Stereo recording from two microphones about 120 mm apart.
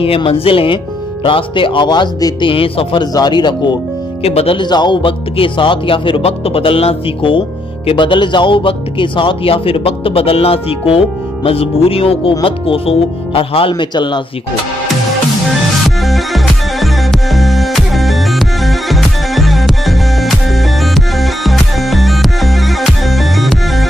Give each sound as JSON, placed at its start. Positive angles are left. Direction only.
{"t": 0.0, "sound": "speech", "side_deg": 50}
{"t": 2.5, "sound": "speech", "side_deg": 50}
{"t": 4.2, "sound": "speech", "side_deg": 55}
{"t": 4.6, "sound": "speech", "side_deg": 40}
{"t": 16.0, "sound": "music", "side_deg": 0}